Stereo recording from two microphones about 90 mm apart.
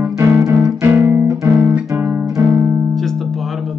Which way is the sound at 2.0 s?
25° right (ahead or behind).